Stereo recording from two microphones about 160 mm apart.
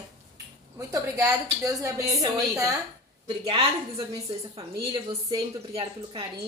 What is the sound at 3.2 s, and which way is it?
Speech, 30° right (ahead or behind).